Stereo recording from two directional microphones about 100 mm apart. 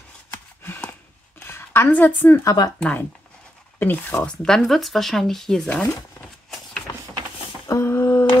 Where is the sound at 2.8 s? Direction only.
15° left (ahead or behind).